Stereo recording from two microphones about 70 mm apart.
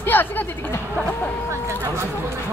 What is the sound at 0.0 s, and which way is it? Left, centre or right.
Speech, left.